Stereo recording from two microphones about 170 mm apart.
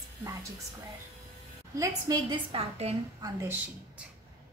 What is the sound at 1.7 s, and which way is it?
Speech, 20° right (ahead or behind).